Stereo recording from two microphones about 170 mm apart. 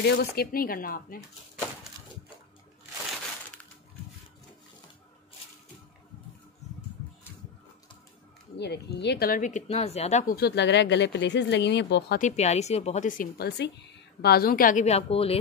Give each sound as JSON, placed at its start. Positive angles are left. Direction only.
{"t": 0.0, "sound": "speech", "side_deg": 70}
{"t": 6.6, "sound": "a sound", "side_deg": 40}
{"t": 8.5, "sound": "speech", "side_deg": 80}
{"t": 10.3, "sound": "speech", "side_deg": 80}
{"t": 12.2, "sound": "speech", "side_deg": 45}
{"t": 13.6, "sound": "speech", "side_deg": 80}